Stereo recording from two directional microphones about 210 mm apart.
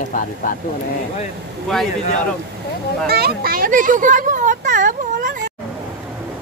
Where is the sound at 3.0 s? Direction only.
50° right (ahead or behind).